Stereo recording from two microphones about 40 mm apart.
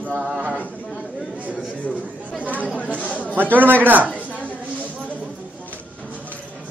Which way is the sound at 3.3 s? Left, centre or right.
Right.